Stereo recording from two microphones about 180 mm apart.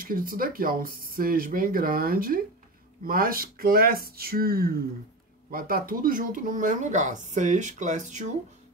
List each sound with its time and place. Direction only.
0.0 s speech: 50° right (ahead or behind)